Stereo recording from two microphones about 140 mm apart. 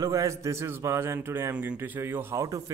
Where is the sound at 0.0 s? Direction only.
25° right (ahead or behind).